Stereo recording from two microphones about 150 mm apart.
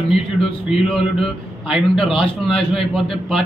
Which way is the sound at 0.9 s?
Centre (ahead or behind).